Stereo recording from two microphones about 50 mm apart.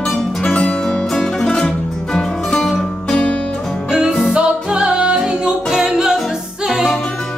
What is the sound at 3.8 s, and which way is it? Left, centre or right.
Music, centre.